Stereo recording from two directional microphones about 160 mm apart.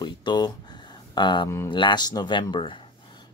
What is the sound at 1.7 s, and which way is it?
Speech, 30° left (ahead or behind).